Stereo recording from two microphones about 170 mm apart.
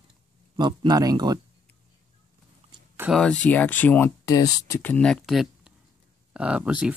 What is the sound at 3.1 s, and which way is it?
Speech, 5° left (ahead or behind).